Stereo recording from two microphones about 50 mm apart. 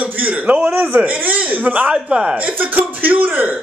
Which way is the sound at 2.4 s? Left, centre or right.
Right.